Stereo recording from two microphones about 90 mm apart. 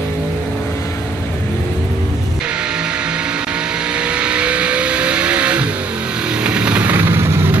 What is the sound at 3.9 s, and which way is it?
Vehicle, 10° right (ahead or behind).